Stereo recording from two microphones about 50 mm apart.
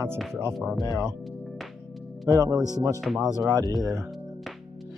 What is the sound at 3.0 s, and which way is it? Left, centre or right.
Speech, centre.